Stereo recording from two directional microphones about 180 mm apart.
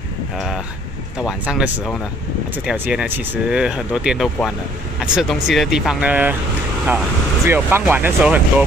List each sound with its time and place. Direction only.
1.2 s speech: 5° right (ahead or behind)
7.4 s speech: 10° right (ahead or behind)